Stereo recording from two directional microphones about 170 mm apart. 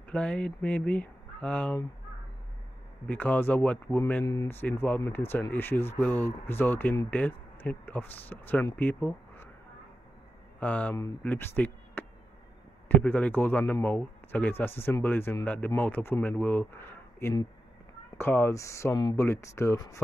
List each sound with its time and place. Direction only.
0.1 s a man's voice: 5° left (ahead or behind)
3.1 s a man's voice: 10° left (ahead or behind)
10.6 s a man's voice: 10° left (ahead or behind)